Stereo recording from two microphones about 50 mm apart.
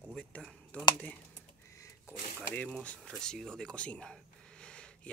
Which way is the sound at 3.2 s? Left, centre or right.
Centre.